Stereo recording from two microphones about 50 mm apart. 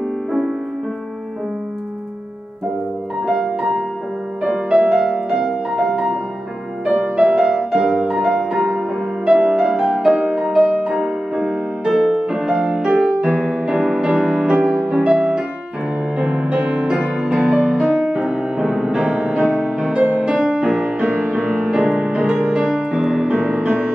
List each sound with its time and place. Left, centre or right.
3.3 s music: centre
4.5 s music: centre
5.7 s music: centre
6.9 s music: right
10.1 s music: right